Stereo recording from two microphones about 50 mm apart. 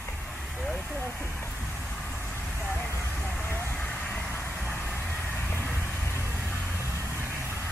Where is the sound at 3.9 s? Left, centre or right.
Left.